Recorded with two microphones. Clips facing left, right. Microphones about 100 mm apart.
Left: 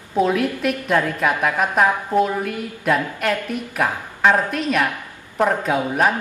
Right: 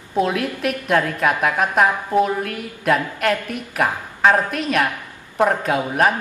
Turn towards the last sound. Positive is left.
turn(degrees=-5)  # may be behind; listen again after turning